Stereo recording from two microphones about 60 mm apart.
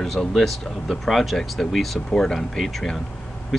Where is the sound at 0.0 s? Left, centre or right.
Centre.